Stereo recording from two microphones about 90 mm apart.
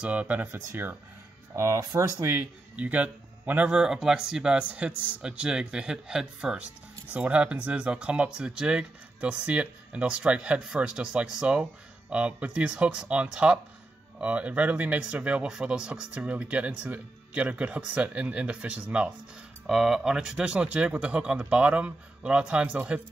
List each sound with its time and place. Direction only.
0.0 s speech: 15° right (ahead or behind); by 2.2 s 40° right (ahead or behind)
2.2 s speech: 20° right (ahead or behind)